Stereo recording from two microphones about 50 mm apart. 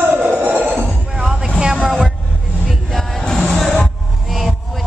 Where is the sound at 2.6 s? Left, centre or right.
Centre.